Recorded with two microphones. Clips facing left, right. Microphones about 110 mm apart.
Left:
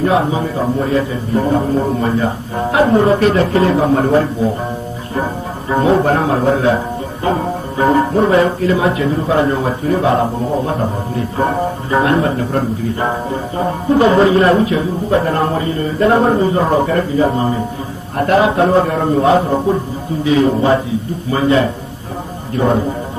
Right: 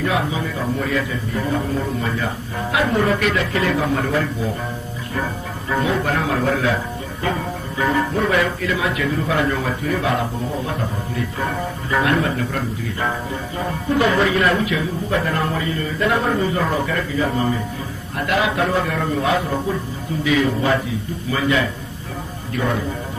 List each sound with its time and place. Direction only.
0.0 s speech: 35° left (ahead or behind)